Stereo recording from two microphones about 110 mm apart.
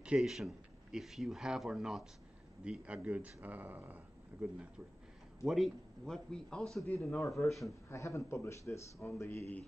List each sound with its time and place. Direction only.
0.0 s a man's voice: 5° right (ahead or behind)
7.9 s speech: 25° left (ahead or behind)